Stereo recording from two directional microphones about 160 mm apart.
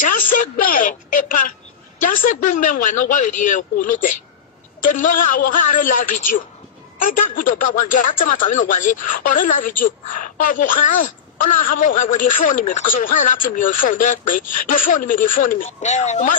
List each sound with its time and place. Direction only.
0.3 s speech: 60° left (ahead or behind)
2.0 s speech: 55° left (ahead or behind)